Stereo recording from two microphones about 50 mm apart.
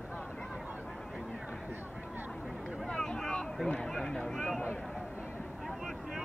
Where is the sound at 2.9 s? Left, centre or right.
Centre.